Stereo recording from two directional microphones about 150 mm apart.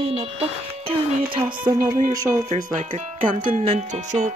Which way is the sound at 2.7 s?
55° right (ahead or behind).